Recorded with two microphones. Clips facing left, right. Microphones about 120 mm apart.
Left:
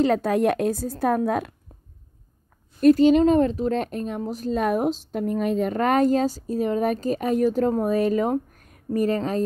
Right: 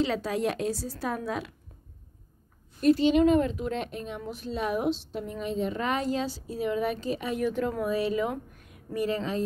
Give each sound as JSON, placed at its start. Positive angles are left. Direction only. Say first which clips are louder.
{"t": 0.0, "sound": "a woman's voice", "louder": "left 7 dB", "side_deg": 50}
{"t": 2.8, "sound": "a woman's voice", "louder": "left 6 dB", "side_deg": 45}